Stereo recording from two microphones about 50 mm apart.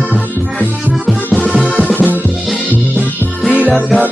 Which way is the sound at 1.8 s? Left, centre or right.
Right.